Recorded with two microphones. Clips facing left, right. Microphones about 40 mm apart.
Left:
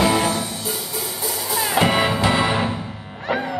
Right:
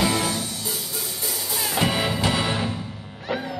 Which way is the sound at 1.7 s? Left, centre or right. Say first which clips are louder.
Left 5 dB; left.